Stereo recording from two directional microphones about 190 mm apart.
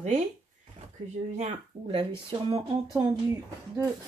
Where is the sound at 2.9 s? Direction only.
15° right (ahead or behind).